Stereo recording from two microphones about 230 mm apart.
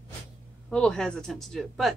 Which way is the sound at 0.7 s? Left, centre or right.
Centre.